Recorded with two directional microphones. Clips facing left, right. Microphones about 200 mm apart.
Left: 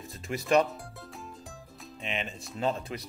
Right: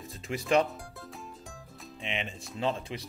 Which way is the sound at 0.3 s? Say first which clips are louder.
Left 1 dB; 45° left (ahead or behind).